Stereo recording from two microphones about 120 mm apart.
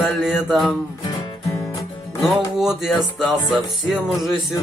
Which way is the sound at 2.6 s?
5° right (ahead or behind).